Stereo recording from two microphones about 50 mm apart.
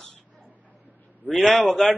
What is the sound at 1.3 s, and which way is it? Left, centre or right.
Speech, centre.